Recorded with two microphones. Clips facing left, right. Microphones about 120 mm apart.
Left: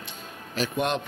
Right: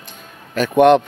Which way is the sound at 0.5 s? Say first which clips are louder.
Right 15 dB; 60° right (ahead or behind).